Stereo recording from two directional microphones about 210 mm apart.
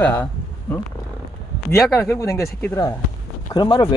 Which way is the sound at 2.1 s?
15° left (ahead or behind).